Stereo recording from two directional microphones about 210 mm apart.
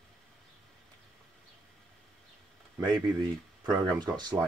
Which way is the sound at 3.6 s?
20° right (ahead or behind).